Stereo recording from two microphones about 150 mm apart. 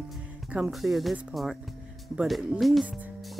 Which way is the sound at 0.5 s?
5° right (ahead or behind).